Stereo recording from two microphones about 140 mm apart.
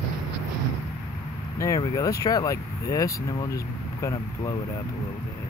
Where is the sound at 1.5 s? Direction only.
20° left (ahead or behind).